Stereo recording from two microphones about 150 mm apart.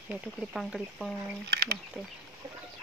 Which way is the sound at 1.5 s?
90° right.